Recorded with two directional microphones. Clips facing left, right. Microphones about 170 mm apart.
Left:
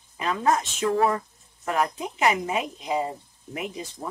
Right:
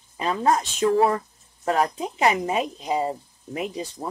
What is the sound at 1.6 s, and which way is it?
Speech, 30° right (ahead or behind).